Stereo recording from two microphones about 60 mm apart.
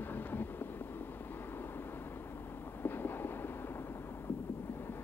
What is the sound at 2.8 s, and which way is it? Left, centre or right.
Train, left.